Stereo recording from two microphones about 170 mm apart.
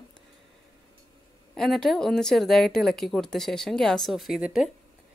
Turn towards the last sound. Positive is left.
turn(degrees=-5)  # may be behind; listen again after turning